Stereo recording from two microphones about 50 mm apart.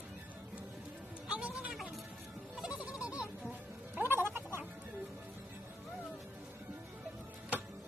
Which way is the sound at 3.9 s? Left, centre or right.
Right.